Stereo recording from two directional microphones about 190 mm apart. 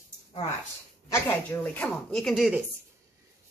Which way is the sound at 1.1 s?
15° left (ahead or behind).